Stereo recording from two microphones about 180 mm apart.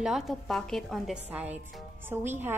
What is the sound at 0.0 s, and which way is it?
A woman's voice, centre (ahead or behind).